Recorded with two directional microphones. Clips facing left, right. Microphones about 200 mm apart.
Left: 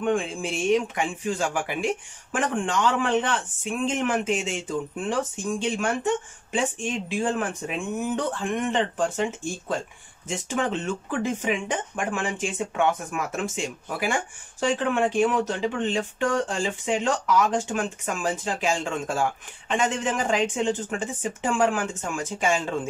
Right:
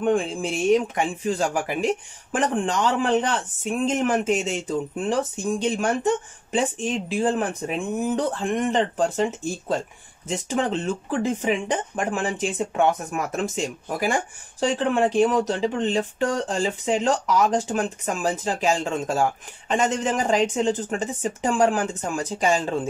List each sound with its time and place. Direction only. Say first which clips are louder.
0.0 s speech: right 3 dB; 35° right (ahead or behind)